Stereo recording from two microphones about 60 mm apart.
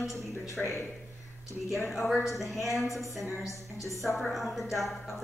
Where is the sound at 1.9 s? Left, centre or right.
Centre.